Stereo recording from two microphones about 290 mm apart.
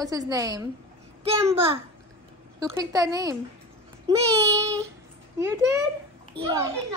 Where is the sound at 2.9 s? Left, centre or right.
Centre.